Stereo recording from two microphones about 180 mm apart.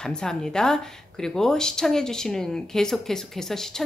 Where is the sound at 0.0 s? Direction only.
5° left (ahead or behind).